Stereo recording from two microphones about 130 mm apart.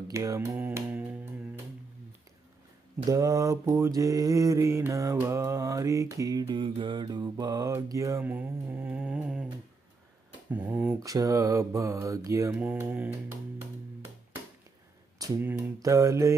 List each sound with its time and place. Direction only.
0.1 s mantra: 25° right (ahead or behind)
3.1 s mantra: 25° right (ahead or behind)
8.2 s mantra: 15° right (ahead or behind)
10.5 s speech: 15° right (ahead or behind)
11.0 s mantra: 25° right (ahead or behind)
12.5 s speech: 15° right (ahead or behind)
15.4 s mantra: 20° right (ahead or behind)